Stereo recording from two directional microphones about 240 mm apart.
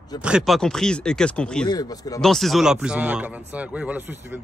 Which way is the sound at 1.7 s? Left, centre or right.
Centre.